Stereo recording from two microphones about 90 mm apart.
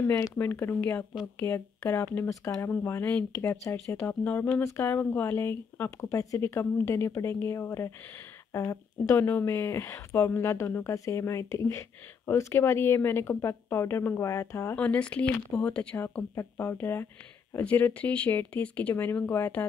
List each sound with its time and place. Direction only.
0.0 s speech: 35° left (ahead or behind)
3.9 s speech: 20° left (ahead or behind)
14.8 s speech: 15° left (ahead or behind)
16.0 s speech: 30° left (ahead or behind)
17.6 s speech: 15° left (ahead or behind)